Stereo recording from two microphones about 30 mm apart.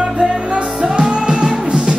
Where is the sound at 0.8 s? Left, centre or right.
Right.